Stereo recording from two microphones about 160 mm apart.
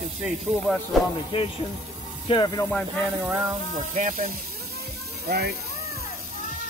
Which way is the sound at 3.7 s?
50° right (ahead or behind).